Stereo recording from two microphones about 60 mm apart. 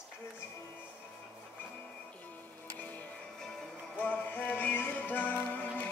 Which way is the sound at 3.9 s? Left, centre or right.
Left.